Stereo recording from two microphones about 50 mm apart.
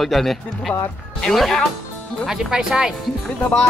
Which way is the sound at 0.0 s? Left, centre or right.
Centre.